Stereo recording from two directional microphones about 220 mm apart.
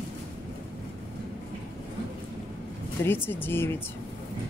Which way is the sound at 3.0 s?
10° left (ahead or behind).